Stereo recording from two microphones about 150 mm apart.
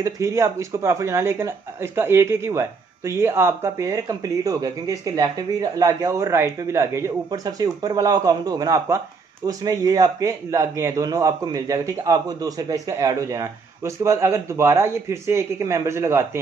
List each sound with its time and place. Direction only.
0.0 s speech: 20° right (ahead or behind)